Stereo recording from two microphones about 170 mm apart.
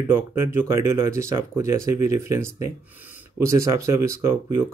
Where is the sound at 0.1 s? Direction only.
15° right (ahead or behind).